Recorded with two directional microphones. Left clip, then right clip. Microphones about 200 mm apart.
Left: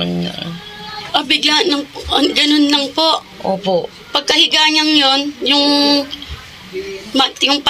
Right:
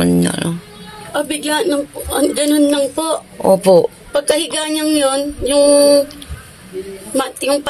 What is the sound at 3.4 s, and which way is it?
Speech, 60° right (ahead or behind).